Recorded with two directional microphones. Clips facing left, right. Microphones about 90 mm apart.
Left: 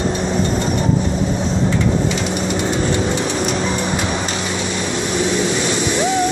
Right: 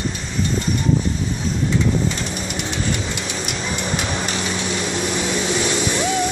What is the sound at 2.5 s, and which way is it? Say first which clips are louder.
Vehicle: left 6 dB; 35° left (ahead or behind).